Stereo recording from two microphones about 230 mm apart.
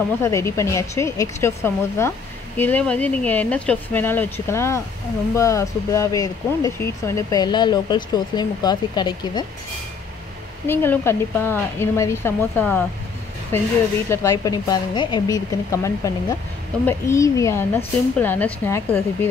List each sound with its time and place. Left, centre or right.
0.2 s speech: centre
10.7 s speech: centre